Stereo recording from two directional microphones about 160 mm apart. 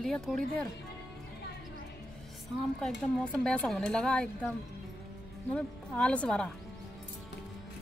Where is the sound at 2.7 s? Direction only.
5° left (ahead or behind).